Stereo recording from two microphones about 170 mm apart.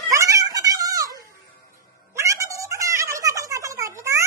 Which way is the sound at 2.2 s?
20° right (ahead or behind).